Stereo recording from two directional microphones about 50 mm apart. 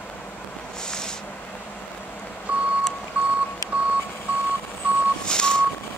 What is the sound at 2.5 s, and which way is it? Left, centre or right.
Vehicle, right.